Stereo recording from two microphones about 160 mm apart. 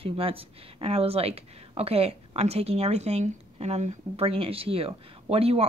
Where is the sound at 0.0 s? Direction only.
35° right (ahead or behind).